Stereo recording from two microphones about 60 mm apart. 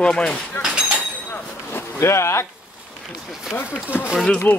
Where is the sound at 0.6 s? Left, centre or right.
Left.